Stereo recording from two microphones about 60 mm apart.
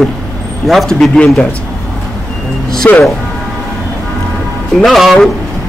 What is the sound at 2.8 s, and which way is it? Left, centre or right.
Speech, left.